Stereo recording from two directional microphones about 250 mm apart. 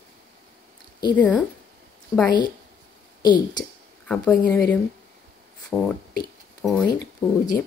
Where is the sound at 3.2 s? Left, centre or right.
Centre.